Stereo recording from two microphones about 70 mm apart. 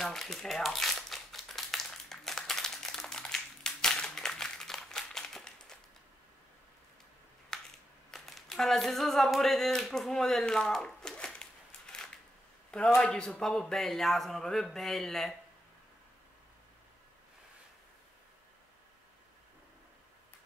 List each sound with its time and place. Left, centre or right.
0.0 s crumpling: centre
7.5 s camera: centre
8.1 s a sound: centre
13.0 s a man's voice: centre